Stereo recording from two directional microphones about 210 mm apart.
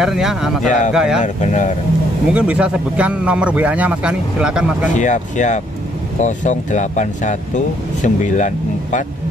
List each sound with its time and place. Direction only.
0.0 s speech: centre (ahead or behind)
0.7 s speech: 35° left (ahead or behind)
0.9 s speech: 5° right (ahead or behind)
1.2 s speech: 35° left (ahead or behind)
2.3 s speech: 5° right (ahead or behind)
4.9 s speech: 35° left (ahead or behind)